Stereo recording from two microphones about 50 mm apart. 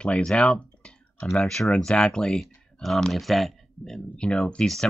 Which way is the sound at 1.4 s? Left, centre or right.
Centre.